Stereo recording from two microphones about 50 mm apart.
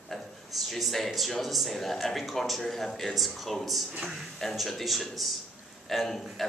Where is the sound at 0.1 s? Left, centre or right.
Centre.